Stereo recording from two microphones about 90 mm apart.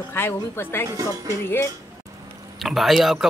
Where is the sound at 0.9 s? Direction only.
40° right (ahead or behind).